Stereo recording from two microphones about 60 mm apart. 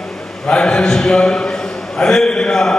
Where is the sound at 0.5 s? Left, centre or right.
Centre.